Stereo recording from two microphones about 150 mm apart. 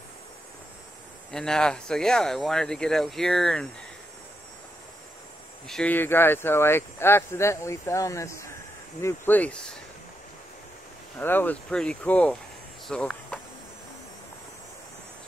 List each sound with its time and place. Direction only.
1.3 s speech: 5° left (ahead or behind)
5.7 s speech: 10° left (ahead or behind)
11.1 s speech: 15° left (ahead or behind)
12.8 s cricket: 5° left (ahead or behind)